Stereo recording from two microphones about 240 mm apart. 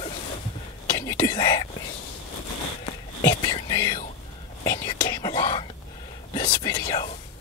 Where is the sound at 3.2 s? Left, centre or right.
Centre.